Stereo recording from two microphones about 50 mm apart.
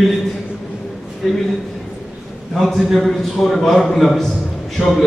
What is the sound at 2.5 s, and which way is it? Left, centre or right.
A man's voice, centre.